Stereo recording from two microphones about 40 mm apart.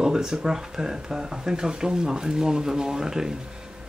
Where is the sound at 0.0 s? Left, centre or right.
Centre.